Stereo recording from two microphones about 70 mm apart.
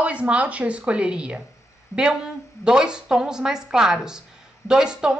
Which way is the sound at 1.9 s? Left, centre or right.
Left.